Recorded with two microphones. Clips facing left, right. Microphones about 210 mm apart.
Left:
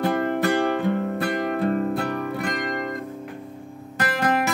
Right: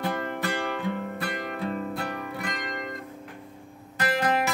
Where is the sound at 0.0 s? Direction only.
45° left (ahead or behind).